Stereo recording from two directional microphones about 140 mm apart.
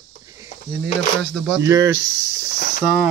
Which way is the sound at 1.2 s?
5° left (ahead or behind).